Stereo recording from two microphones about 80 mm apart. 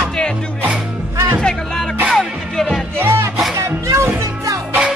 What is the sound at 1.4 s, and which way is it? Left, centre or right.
Music, centre.